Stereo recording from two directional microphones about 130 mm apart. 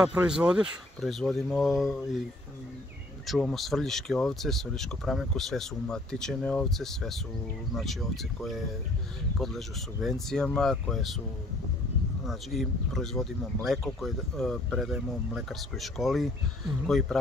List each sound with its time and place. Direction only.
0.1 s speech: 10° right (ahead or behind)
3.3 s speech: centre (ahead or behind)
12.3 s speech: centre (ahead or behind)